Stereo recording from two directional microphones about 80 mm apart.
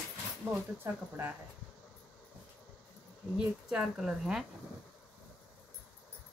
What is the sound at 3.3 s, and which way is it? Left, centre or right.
Speech, centre.